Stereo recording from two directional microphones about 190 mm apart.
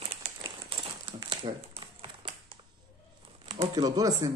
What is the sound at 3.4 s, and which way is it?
Crumpling, 35° right (ahead or behind).